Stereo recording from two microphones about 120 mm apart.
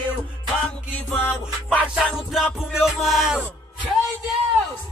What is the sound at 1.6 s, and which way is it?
Music, 10° right (ahead or behind).